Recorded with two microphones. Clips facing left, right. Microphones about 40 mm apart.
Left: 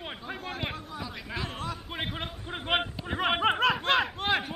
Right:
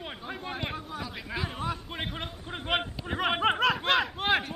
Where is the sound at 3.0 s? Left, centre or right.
Centre.